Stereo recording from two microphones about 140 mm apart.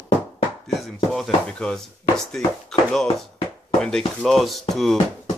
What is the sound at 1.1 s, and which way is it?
Speech, centre (ahead or behind).